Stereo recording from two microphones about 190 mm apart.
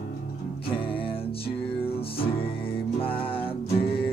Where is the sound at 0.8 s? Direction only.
30° left (ahead or behind).